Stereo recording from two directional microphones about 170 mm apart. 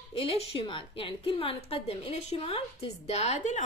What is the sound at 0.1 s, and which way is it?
A woman's voice, 35° left (ahead or behind).